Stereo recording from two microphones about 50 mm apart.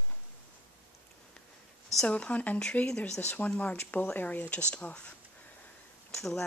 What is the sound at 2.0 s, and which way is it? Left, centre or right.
Speech, left.